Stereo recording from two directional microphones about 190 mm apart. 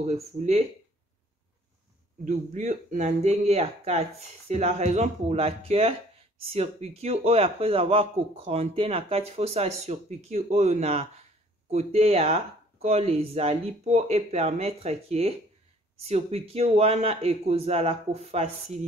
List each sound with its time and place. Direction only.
0.0 s a man's voice: 35° right (ahead or behind)
2.2 s a man's voice: 40° right (ahead or behind)